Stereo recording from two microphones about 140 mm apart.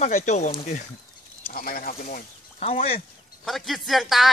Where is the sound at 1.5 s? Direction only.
90° left.